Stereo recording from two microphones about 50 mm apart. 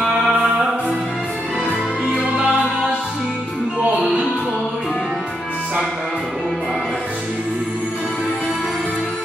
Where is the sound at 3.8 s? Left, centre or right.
Right.